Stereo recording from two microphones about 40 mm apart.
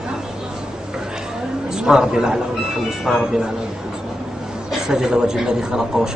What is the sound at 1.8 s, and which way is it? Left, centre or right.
Speech, centre.